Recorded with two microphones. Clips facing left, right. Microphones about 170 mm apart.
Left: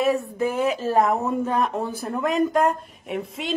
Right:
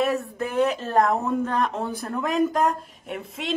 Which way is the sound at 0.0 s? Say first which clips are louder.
Left 3 dB; centre (ahead or behind).